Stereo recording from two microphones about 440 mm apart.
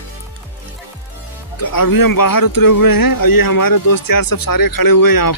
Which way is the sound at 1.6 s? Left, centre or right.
Left.